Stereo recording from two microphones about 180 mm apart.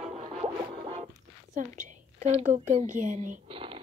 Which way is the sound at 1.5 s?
40° right (ahead or behind).